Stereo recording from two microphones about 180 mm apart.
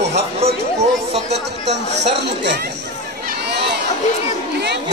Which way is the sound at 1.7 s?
70° right (ahead or behind).